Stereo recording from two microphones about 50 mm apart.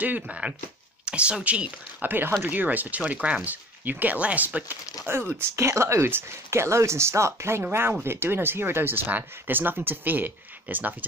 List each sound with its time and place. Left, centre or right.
0.0 s speech: right
2.0 s speech: right
3.8 s speech: right
5.6 s speech: right
6.0 s speech: right
8.0 s speech: right